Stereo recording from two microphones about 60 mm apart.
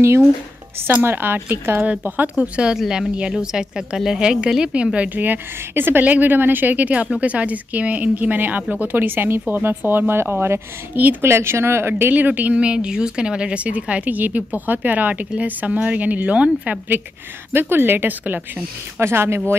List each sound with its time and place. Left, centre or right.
0.8 s a woman's voice: right; by 2.7 s centre
2.7 s speech: centre
4.9 s a woman's voice: right
11.2 s speech: right
12.1 s speech: right
17.5 s a woman's voice: right
18.9 s speech: right